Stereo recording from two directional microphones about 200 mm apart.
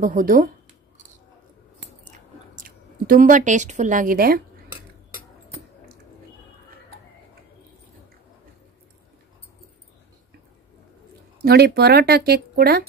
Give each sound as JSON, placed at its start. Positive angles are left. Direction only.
{"t": 0.0, "sound": "speech", "side_deg": -40}
{"t": 2.0, "sound": "chewing", "side_deg": -40}
{"t": 11.4, "sound": "speech", "side_deg": -50}